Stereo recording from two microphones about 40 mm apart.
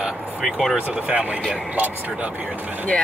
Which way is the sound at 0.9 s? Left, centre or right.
Right.